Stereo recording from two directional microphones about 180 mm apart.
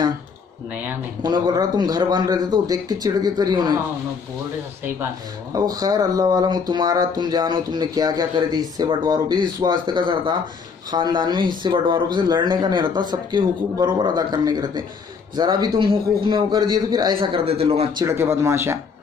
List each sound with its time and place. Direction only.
1.2 s speech: 20° right (ahead or behind)
5.5 s speech: 20° right (ahead or behind)
18.0 s speech: 15° right (ahead or behind)